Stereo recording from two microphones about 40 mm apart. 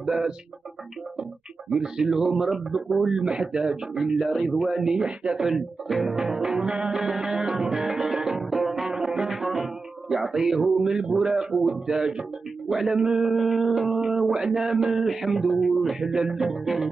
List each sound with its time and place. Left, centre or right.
0.0 s music: centre
1.7 s speech: centre
4.9 s speech: centre
5.4 s a sound: centre
6.1 s music: centre
12.6 s a sound: centre
12.9 s speech: centre
13.4 s a sound: centre
16.0 s speech: centre